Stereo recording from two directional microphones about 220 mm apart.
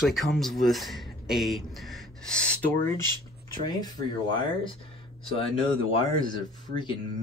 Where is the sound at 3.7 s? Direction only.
20° left (ahead or behind).